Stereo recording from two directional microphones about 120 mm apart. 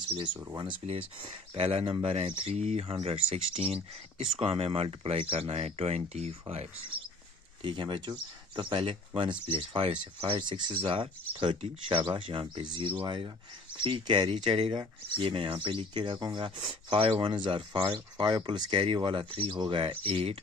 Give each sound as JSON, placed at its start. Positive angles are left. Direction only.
{"t": 0.8, "sound": "speech", "side_deg": -45}
{"t": 7.6, "sound": "speech", "side_deg": -45}